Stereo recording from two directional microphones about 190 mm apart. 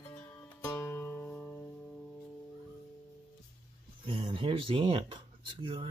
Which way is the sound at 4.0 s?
25° right (ahead or behind).